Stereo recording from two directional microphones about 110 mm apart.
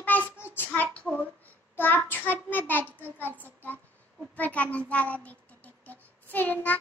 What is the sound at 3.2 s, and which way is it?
Child singing, 15° left (ahead or behind).